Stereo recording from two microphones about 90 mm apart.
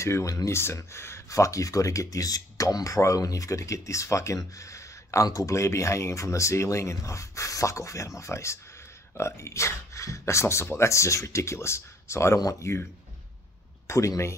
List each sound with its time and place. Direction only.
0.0 s speech: 35° left (ahead or behind)
13.8 s speech: 35° left (ahead or behind)